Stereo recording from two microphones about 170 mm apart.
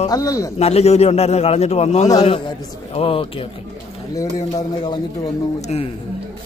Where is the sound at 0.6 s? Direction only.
40° left (ahead or behind).